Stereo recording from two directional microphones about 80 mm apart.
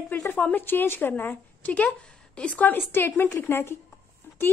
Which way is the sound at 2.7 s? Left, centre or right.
Left.